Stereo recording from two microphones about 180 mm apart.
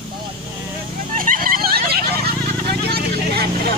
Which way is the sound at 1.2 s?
50° right (ahead or behind).